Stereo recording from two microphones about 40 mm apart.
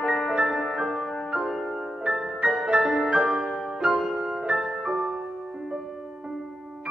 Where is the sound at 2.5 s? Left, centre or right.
Right.